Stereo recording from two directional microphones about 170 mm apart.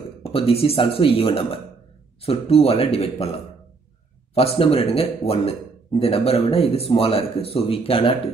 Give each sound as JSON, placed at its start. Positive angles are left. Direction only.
{"t": 0.2, "sound": "speech", "side_deg": 35}
{"t": 4.4, "sound": "speech", "side_deg": 35}